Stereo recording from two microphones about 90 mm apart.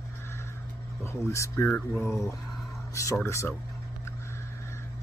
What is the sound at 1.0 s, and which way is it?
Speech, 30° left (ahead or behind).